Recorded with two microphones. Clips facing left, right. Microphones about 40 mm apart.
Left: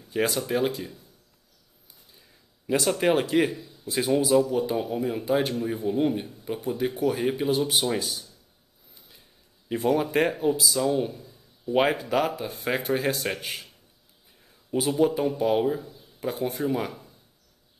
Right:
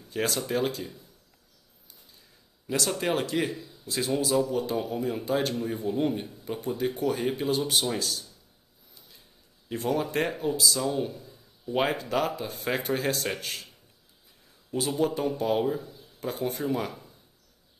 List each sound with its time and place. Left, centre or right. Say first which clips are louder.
0.0 s speech: left 3 dB; centre
2.1 s a sound: left 1 dB; centre
3.8 s speech: left 4 dB; centre
9.7 s speech: left 4 dB; centre
14.7 s speech: left 4 dB; centre